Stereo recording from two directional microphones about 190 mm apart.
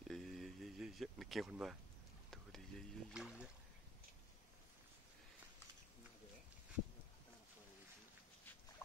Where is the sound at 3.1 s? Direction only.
5° right (ahead or behind).